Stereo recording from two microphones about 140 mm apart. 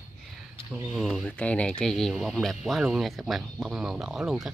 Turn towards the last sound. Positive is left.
turn(degrees=-5)  # may be behind; listen again after turning